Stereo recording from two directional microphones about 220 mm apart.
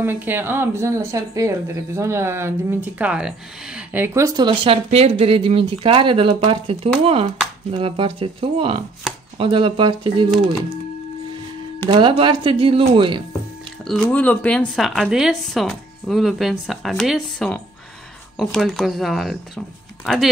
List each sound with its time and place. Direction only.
0.0 s speech: 10° right (ahead or behind)
11.9 s speech: 25° right (ahead or behind)
13.8 s speech: 5° left (ahead or behind)